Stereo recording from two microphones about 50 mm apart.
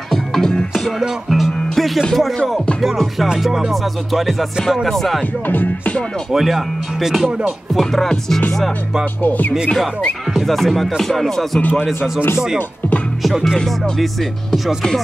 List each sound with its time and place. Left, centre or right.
0.1 s music: centre
0.9 s music: centre
6.3 s speech: centre
7.8 s music: centre
9.2 s music: left
10.3 s music: centre
13.2 s music: centre